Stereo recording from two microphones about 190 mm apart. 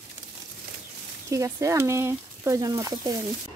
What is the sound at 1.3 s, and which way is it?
Speech, 15° right (ahead or behind).